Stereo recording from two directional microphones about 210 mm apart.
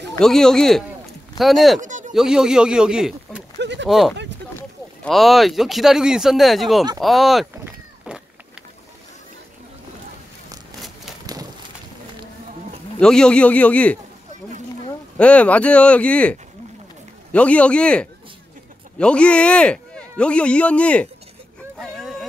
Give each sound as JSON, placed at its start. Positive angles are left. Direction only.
{"t": 0.2, "sound": "speech", "side_deg": 0}
{"t": 1.8, "sound": "a sound", "side_deg": -35}
{"t": 2.1, "sound": "speech", "side_deg": -5}
{"t": 3.5, "sound": "a sound", "side_deg": -55}
{"t": 3.8, "sound": "speech", "side_deg": 0}
{"t": 8.1, "sound": "a sound", "side_deg": -5}
{"t": 11.3, "sound": "bird", "side_deg": -15}
{"t": 13.0, "sound": "speech", "side_deg": 5}
{"t": 15.1, "sound": "speech", "side_deg": 5}
{"t": 21.7, "sound": "vehicle", "side_deg": 0}